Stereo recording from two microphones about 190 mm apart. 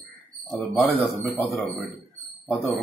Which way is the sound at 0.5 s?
Centre (ahead or behind).